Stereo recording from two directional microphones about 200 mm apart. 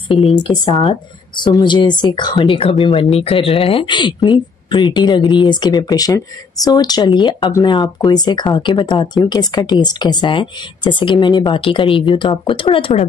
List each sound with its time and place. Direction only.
0.2 s speech: 25° left (ahead or behind)